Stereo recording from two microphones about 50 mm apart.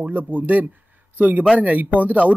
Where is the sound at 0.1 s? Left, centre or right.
Right.